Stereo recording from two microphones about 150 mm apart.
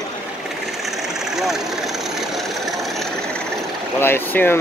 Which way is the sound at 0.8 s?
Centre (ahead or behind).